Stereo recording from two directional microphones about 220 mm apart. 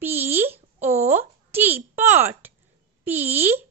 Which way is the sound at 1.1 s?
10° right (ahead or behind).